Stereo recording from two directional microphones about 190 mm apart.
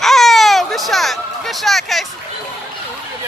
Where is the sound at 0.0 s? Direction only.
Centre (ahead or behind).